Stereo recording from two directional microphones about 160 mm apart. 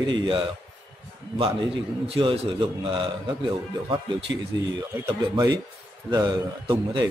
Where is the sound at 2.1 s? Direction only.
35° right (ahead or behind).